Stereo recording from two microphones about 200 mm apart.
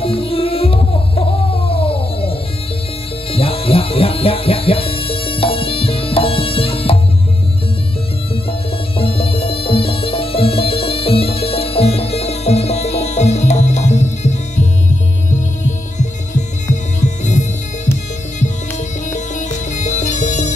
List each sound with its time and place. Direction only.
0.0 s music: 25° left (ahead or behind)
8.5 s music: 30° left (ahead or behind)
19.1 s music: 35° left (ahead or behind)